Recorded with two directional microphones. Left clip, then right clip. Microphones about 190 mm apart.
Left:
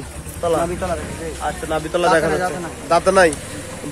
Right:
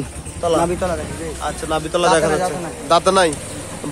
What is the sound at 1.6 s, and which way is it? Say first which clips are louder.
Speech: right 1 dB; 15° right (ahead or behind).